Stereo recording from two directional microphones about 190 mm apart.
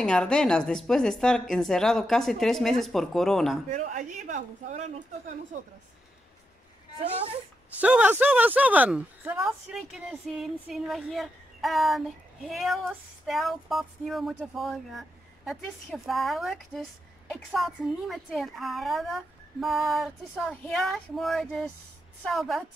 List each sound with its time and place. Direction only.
0.0 s speech: 5° left (ahead or behind)
3.7 s a man's voice: 40° right (ahead or behind)
7.8 s speech: 5° right (ahead or behind)